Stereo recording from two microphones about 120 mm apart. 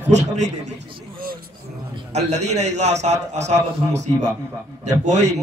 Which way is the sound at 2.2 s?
65° right (ahead or behind).